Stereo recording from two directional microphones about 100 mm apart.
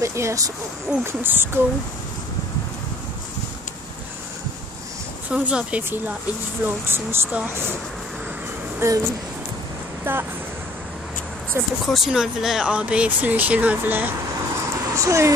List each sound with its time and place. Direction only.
0.0 s speech: 30° right (ahead or behind)
5.3 s speech: 10° right (ahead or behind)
8.7 s speech: 35° right (ahead or behind)
11.6 s speech: 20° right (ahead or behind)
11.9 s speech: 5° right (ahead or behind)
15.0 s speech: 30° right (ahead or behind)